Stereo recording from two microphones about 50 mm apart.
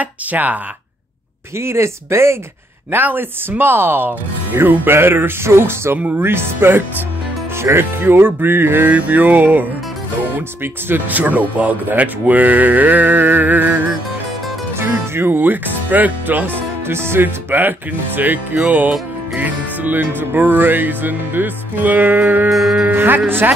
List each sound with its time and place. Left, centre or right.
0.0 s speech: right
1.6 s speech: right
2.9 s speech: right
15.1 s speech: right
16.8 s speech: right
17.2 s speech: right
22.5 s music: centre
22.8 s speech: right